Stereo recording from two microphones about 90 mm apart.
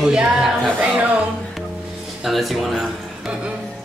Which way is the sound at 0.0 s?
5° right (ahead or behind).